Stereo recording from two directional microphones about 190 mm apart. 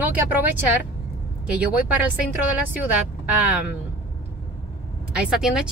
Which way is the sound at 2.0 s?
5° right (ahead or behind).